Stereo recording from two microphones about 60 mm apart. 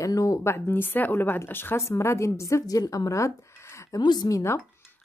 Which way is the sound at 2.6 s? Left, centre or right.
Left.